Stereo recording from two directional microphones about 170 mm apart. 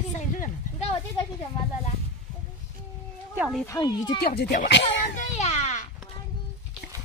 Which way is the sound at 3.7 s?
25° left (ahead or behind).